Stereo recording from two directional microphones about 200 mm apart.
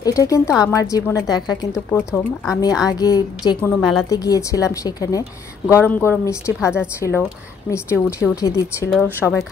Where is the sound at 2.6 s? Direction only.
20° left (ahead or behind).